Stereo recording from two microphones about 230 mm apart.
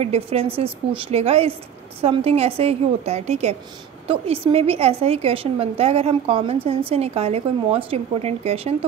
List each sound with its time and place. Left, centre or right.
0.0 s a woman's voice: right